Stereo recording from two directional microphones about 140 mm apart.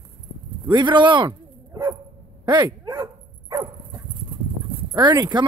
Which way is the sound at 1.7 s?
25° right (ahead or behind).